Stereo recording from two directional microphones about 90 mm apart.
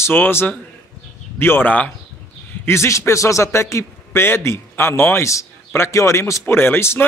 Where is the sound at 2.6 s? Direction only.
30° left (ahead or behind).